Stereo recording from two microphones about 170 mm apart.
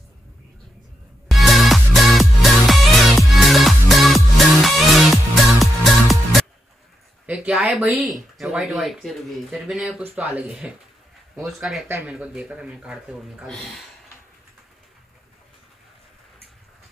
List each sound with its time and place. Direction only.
1.3 s music: centre (ahead or behind)
7.2 s speech: 5° right (ahead or behind)